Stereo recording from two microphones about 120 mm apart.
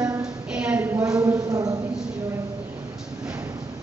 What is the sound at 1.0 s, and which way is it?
Speech, 25° right (ahead or behind).